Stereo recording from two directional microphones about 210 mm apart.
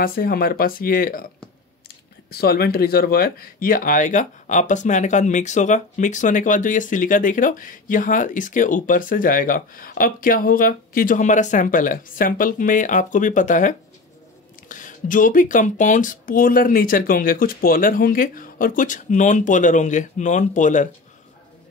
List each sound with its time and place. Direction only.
0.0 s speech: 45° left (ahead or behind)
2.3 s speech: 50° left (ahead or behind)